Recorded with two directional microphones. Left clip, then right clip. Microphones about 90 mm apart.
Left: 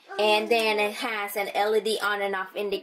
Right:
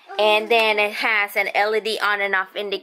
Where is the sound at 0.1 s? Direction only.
30° right (ahead or behind).